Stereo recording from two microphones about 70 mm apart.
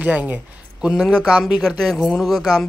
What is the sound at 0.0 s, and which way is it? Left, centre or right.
Speech, right.